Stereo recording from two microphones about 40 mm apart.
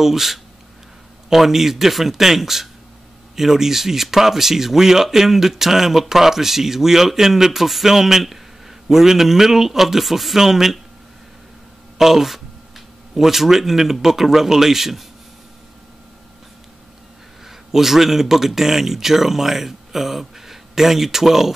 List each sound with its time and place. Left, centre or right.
0.0 s speech: centre
12.0 s speech: centre
17.5 s speech: centre